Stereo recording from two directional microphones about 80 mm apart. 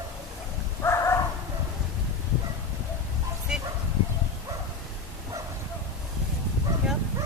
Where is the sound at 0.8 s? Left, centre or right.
Left.